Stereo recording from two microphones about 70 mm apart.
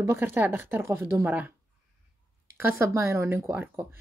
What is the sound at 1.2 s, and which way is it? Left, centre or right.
Speech, right.